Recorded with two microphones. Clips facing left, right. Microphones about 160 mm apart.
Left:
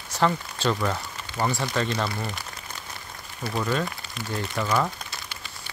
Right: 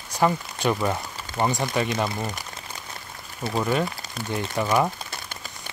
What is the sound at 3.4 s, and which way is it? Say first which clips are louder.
Speech: right 3 dB; 20° right (ahead or behind).